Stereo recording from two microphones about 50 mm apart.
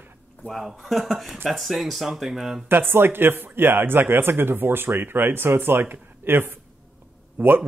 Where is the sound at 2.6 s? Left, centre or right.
Right.